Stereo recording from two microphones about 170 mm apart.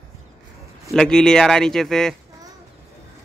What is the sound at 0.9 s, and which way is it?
Speech, 5° left (ahead or behind).